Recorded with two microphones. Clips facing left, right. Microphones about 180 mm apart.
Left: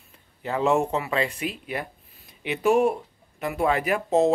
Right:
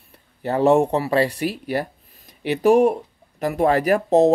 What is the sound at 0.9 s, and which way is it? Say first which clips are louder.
Speech: right 6 dB; 35° right (ahead or behind).